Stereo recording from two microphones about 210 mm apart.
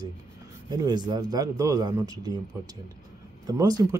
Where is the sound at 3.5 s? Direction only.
15° right (ahead or behind).